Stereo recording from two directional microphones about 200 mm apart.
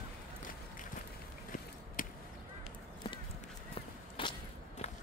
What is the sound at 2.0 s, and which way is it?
Chop, 45° left (ahead or behind).